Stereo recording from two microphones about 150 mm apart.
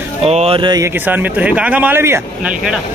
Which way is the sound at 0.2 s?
45° right (ahead or behind).